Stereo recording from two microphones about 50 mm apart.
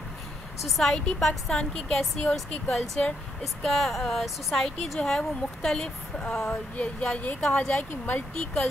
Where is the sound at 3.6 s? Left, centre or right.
Centre; by 7.7 s left.